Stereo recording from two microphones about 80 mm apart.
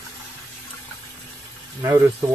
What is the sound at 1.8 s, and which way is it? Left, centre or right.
Speech, right.